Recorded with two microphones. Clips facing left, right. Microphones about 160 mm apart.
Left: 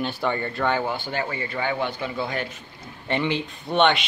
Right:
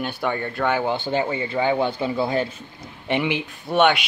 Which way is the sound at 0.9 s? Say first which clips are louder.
Right 5 dB; 25° right (ahead or behind).